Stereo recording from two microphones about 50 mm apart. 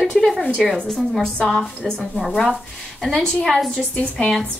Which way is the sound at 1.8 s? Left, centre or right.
Centre.